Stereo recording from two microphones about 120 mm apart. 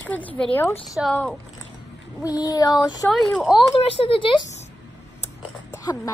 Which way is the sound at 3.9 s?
50° left (ahead or behind).